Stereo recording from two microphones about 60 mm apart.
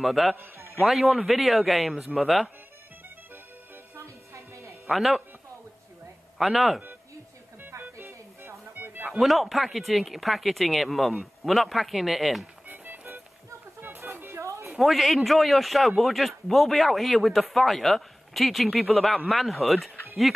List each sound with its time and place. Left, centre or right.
0.0 s speech: centre
3.9 s music: right
4.8 s speech: centre
6.3 s speech: centre
7.8 s music: right
9.2 s speech: centre
12.6 s music: right
14.8 s speech: centre